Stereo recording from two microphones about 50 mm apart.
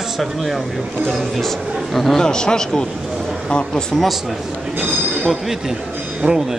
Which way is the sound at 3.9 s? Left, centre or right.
Centre.